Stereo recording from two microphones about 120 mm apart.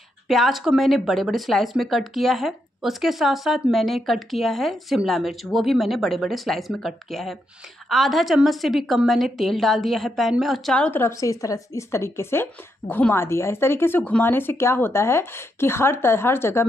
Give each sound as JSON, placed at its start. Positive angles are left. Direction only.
{"t": 0.3, "sound": "a woman's voice", "side_deg": 0}
{"t": 11.0, "sound": "speech", "side_deg": 25}